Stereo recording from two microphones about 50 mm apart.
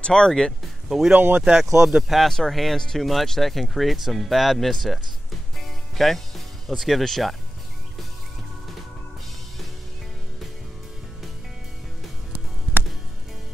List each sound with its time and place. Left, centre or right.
0.0 s speech: centre
0.3 s speech: centre
0.8 s speech: centre
1.1 s speech: right
1.8 s speech: centre
2.0 s speech: centre
5.6 s music: centre
6.8 s speech: centre